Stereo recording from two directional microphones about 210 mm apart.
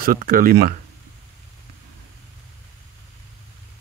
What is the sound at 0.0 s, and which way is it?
Speech, 45° right (ahead or behind).